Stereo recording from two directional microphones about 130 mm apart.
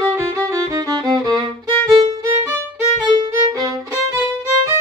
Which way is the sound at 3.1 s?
30° right (ahead or behind).